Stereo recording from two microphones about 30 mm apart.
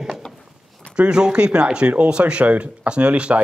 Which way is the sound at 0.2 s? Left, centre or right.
Left.